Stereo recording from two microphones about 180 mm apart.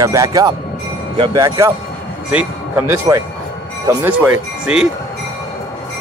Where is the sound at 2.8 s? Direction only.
15° right (ahead or behind).